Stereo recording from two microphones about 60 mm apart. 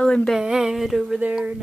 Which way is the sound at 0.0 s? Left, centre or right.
Centre.